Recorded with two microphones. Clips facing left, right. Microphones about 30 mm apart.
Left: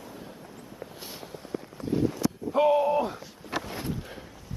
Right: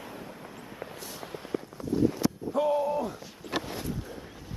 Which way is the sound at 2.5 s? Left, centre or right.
Left.